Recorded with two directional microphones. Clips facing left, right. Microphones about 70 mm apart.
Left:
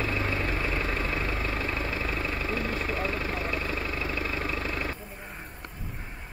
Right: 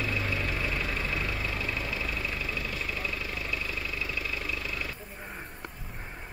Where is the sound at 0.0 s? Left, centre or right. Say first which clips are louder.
Left 2 dB; left.